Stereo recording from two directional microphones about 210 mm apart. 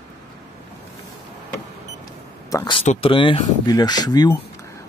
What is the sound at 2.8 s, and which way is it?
Speech, 30° left (ahead or behind).